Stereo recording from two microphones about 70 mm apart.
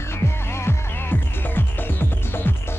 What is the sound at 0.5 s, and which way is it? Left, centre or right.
Music, left.